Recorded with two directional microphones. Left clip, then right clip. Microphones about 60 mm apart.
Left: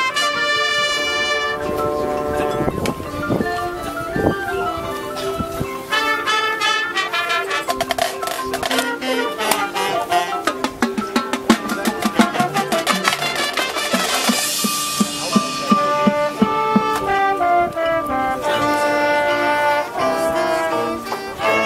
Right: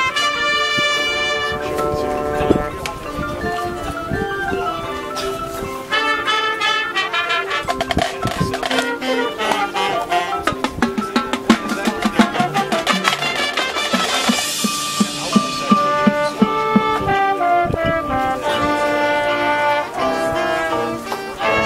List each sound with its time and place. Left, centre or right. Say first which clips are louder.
0.0 s music: right 1 dB; centre
2.3 s wind chime: right 3 dB; centre
5.9 s music: right 1 dB; centre
17.1 s brass instrument: even; centre